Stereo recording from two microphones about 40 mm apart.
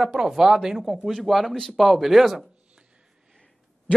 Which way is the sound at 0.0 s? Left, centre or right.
Centre.